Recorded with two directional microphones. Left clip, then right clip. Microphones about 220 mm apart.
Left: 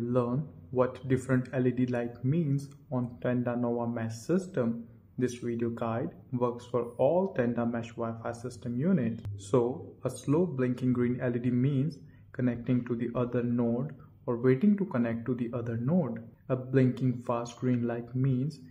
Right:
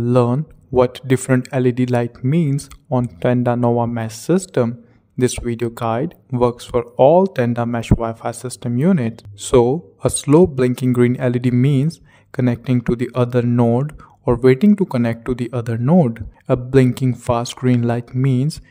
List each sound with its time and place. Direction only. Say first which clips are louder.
0.1 s speech: right 15 dB; 50° right (ahead or behind)